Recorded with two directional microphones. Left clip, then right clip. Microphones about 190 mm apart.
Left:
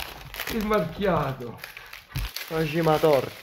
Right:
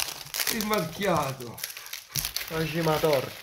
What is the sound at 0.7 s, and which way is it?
Speech, 65° right (ahead or behind).